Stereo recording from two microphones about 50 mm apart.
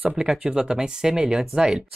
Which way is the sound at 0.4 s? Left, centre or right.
Centre.